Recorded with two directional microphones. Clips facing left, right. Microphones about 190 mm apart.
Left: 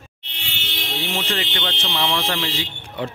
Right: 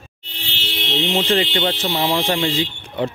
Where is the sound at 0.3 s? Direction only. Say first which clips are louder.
Right 4 dB; 35° right (ahead or behind).